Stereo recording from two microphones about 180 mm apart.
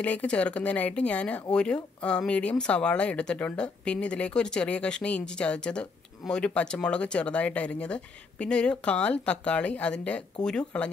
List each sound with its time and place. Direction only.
0.0 s speech: 5° left (ahead or behind)